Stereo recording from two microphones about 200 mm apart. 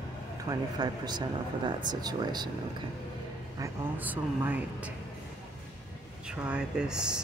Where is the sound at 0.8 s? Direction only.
20° right (ahead or behind).